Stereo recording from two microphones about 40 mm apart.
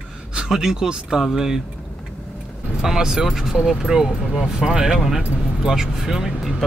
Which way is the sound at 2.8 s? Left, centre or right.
Centre.